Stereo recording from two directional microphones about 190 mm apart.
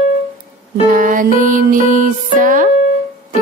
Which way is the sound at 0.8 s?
45° right (ahead or behind).